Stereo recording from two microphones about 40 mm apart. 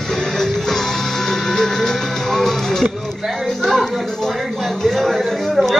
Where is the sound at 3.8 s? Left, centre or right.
Centre.